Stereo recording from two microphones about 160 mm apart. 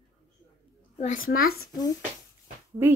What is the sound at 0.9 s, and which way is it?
Speech, 55° left (ahead or behind).